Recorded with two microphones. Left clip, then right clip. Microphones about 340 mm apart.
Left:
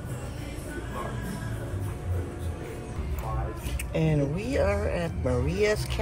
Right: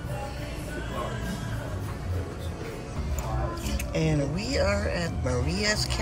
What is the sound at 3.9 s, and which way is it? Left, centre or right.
Speech, centre.